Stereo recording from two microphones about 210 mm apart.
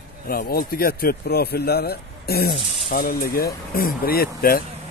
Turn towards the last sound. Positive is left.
turn(degrees=45)  # may be behind; listen again after turning